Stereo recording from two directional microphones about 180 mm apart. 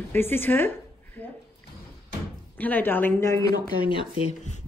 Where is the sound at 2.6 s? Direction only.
10° left (ahead or behind).